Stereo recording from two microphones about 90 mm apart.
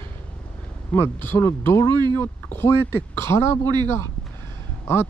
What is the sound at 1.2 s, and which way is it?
Speech, 25° left (ahead or behind).